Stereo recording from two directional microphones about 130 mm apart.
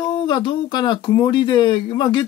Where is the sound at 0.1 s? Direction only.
35° left (ahead or behind).